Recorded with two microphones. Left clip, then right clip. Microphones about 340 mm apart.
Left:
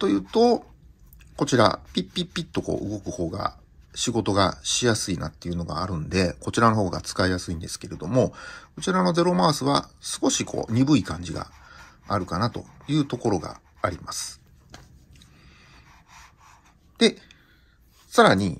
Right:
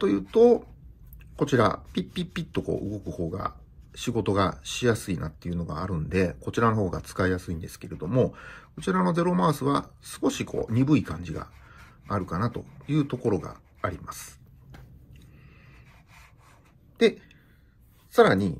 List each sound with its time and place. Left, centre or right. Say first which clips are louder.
0.0 s speech: right 1 dB; centre
2.6 s speech: left 1 dB; left
3.1 s speech: left 4 dB; centre
16.9 s a sound: left 1 dB; centre
18.1 s speech: left 2 dB; centre